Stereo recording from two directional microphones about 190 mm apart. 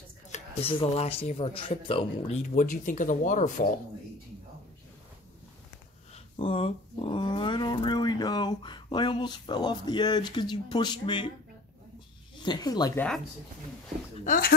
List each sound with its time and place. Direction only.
0.3 s speech: 30° left (ahead or behind)
6.1 s speech: 30° left (ahead or behind)
12.4 s speech: 20° left (ahead or behind)
14.2 s speech: 45° left (ahead or behind)